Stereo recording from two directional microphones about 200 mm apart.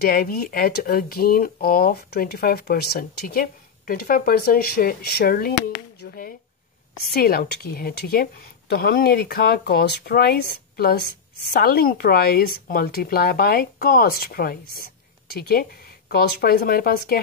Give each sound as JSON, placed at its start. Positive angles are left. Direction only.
{"t": 0.0, "sound": "speech", "side_deg": 50}